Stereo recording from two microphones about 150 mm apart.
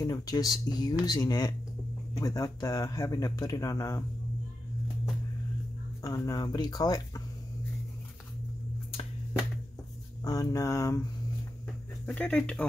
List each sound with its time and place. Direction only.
0.0 s speech: 25° left (ahead or behind)
6.0 s speech: 25° left (ahead or behind)
10.2 s speech: 25° left (ahead or behind)
12.1 s speech: 10° left (ahead or behind)